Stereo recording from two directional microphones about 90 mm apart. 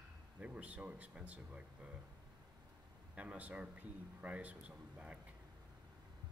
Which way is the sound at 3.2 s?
15° right (ahead or behind).